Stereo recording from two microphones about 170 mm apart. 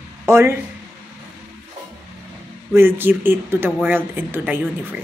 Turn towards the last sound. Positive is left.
turn(degrees=-10)  # may be behind; listen again after turning